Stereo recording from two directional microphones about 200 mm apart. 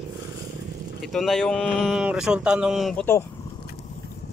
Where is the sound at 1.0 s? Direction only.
Centre (ahead or behind).